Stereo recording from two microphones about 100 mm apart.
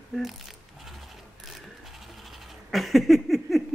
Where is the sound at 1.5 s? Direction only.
Centre (ahead or behind).